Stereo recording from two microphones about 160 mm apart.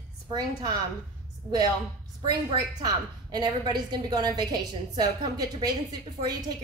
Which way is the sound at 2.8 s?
25° right (ahead or behind).